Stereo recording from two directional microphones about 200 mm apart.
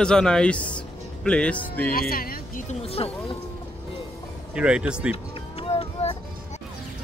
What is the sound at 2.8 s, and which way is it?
Speech, 30° left (ahead or behind).